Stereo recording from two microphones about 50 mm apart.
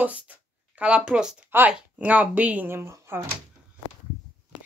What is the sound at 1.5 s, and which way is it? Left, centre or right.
Speech, right.